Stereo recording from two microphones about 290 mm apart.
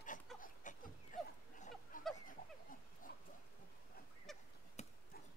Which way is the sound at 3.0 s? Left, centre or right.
Left.